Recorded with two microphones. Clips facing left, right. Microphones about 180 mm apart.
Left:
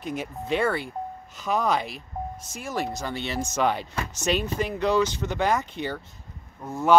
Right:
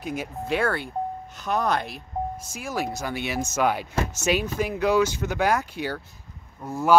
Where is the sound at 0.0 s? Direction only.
5° right (ahead or behind).